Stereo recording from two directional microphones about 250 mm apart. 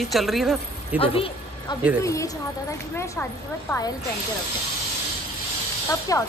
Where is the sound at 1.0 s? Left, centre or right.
Left.